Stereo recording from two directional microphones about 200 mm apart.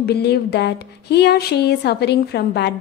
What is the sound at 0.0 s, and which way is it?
Speech, 55° left (ahead or behind).